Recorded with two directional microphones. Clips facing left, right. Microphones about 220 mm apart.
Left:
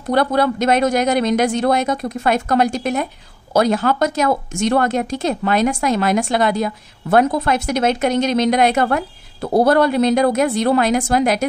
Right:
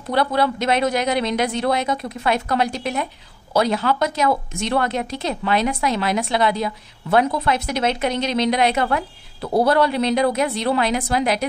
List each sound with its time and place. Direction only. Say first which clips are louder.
0.1 s a woman's voice: left 3 dB; 45° left (ahead or behind)